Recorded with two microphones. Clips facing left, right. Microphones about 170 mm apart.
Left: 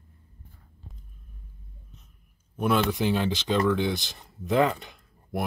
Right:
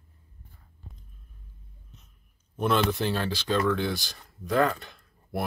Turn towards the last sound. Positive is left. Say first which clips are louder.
# left 1 dB
turn(degrees=15)  # may be behind; listen again after turning